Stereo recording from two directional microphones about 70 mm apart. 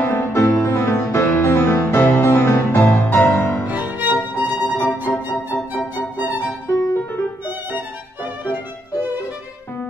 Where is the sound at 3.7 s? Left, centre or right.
Right.